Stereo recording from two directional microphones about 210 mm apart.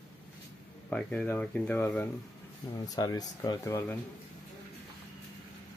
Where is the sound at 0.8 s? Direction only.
5° left (ahead or behind).